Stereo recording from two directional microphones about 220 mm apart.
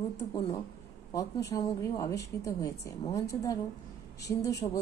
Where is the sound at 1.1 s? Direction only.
15° left (ahead or behind).